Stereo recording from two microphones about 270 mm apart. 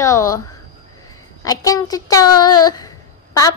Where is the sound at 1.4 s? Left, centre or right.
Centre.